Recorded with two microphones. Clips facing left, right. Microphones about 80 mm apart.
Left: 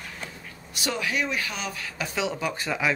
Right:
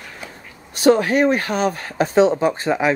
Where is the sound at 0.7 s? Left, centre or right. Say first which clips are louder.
Right 14 dB; right.